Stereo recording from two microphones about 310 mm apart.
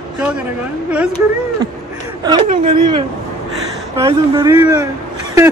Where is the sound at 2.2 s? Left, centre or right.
Centre.